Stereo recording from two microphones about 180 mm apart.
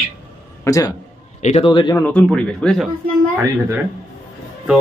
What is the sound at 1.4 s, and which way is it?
Speech, 35° left (ahead or behind).